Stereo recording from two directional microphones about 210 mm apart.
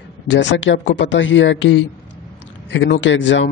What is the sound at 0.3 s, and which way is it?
A man's voice, 60° left (ahead or behind).